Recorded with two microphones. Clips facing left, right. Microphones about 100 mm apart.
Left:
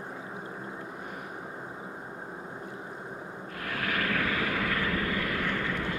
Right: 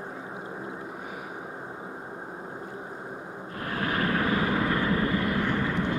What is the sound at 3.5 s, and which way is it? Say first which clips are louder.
Vehicle: right 3 dB; 30° right (ahead or behind).